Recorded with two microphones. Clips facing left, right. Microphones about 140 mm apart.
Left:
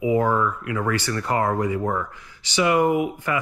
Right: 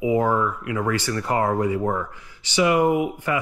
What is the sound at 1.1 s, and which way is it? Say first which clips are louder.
Speech: right 1 dB; 25° right (ahead or behind).